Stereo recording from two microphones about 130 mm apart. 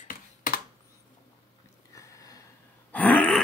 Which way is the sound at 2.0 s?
25° left (ahead or behind).